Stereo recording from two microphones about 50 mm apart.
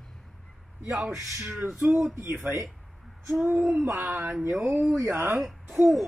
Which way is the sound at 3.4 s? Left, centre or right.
Right.